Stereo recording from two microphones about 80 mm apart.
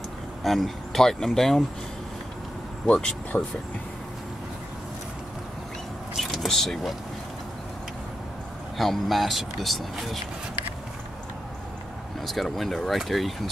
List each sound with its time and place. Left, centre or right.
0.4 s speech: centre
2.9 s speech: centre
6.1 s vehicle: centre
8.7 s speech: centre
12.2 s speech: centre